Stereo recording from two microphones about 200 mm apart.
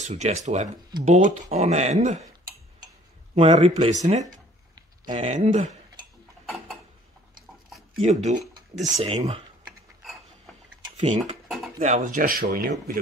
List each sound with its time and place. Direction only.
0.0 s speech: 35° right (ahead or behind)
3.3 s speech: 30° right (ahead or behind)
8.0 s speech: 35° right (ahead or behind)
8.5 s dishes: 40° right (ahead or behind)
9.0 s speech: 30° right (ahead or behind)
11.0 s speech: 35° right (ahead or behind)
11.4 s dishes: centre (ahead or behind)
11.8 s speech: 35° right (ahead or behind)